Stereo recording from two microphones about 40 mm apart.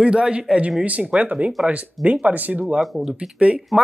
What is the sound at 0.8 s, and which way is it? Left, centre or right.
Speech, right.